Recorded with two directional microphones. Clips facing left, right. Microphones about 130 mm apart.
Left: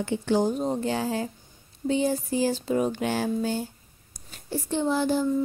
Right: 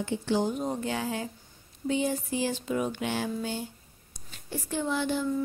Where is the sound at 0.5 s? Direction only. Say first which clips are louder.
Left 4 dB; 30° left (ahead or behind).